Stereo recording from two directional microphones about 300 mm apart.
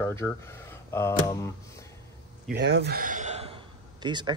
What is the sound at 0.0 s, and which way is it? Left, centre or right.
Speech, centre.